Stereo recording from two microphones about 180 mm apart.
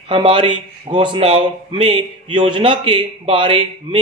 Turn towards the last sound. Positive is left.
turn(degrees=-30)  # may be behind; listen again after turning